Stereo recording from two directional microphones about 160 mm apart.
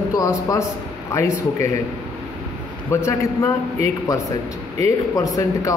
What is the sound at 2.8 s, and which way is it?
Speech, 20° left (ahead or behind).